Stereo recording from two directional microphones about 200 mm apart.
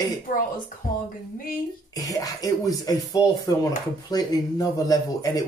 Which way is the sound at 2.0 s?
15° left (ahead or behind).